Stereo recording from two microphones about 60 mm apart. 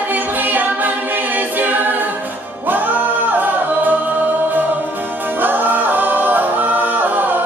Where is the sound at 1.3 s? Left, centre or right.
Right.